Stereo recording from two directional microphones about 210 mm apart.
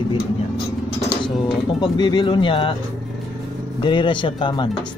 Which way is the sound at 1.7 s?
20° left (ahead or behind).